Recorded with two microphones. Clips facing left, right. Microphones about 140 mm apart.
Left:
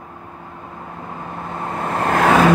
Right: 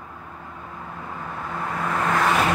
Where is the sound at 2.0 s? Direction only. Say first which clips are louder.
Left 6 dB; 55° left (ahead or behind).